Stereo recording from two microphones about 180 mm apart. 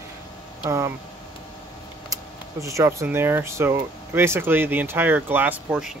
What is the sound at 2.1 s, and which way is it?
Speech, 15° right (ahead or behind).